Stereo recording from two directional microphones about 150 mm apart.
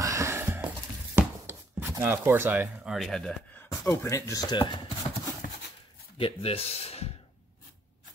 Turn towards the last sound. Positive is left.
turn(degrees=45)  # may be behind; listen again after turning